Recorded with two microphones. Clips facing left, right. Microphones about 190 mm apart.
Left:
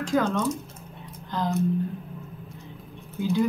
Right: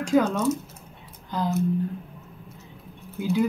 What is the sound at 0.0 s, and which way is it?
Speech, 10° right (ahead or behind).